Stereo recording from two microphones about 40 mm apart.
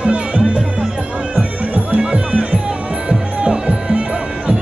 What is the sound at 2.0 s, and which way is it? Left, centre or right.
Music, right.